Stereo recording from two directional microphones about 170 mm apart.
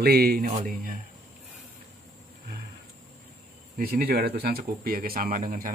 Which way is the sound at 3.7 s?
60° right (ahead or behind).